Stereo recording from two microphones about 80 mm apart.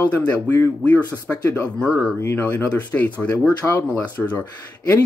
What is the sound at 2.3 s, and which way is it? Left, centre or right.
Speech, left.